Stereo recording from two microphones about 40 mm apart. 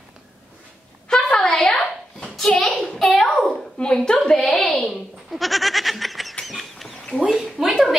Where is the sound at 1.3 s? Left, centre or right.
Centre.